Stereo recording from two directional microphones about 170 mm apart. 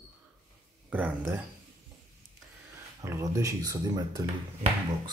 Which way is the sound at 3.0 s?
20° right (ahead or behind).